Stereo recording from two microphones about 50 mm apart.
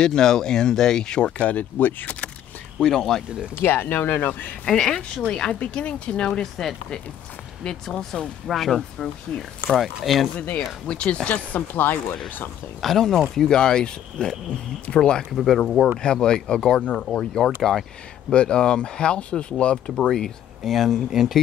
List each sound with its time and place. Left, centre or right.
0.0 s speech: centre
1.4 s speech: left
2.8 s speech: centre
3.5 s speech: left
4.6 s speech: centre
6.4 s speech: centre
10.3 s speech: left
12.8 s speech: centre
15.3 s speech: centre; by 17.3 s left
17.6 s speech: centre
18.3 s speech: centre
20.0 s speech: centre